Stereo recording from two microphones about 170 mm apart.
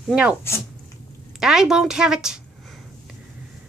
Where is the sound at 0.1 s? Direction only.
5° right (ahead or behind).